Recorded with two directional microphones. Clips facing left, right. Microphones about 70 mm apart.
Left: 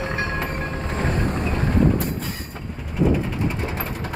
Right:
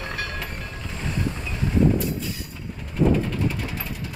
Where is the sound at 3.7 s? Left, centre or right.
Left.